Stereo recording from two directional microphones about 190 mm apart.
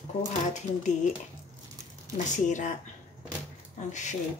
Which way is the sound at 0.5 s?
40° left (ahead or behind).